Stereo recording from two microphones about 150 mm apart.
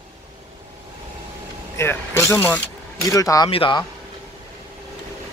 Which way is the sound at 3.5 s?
35° left (ahead or behind).